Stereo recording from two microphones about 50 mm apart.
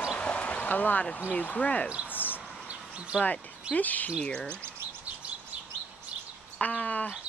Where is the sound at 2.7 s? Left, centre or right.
Right.